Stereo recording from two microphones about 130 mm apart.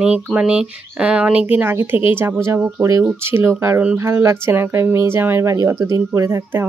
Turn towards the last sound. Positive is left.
turn(degrees=-25)  # may be behind; listen again after turning